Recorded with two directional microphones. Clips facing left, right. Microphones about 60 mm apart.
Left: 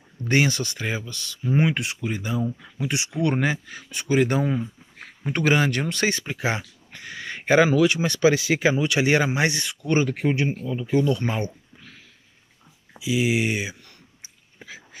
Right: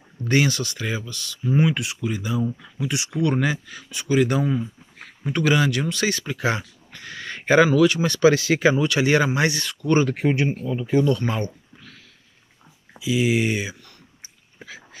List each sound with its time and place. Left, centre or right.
0.3 s speech: left
10.0 s speech: centre
11.1 s speech: centre
13.0 s speech: centre